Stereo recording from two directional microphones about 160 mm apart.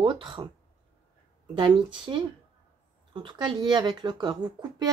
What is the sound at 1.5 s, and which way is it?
Speech, 30° right (ahead or behind).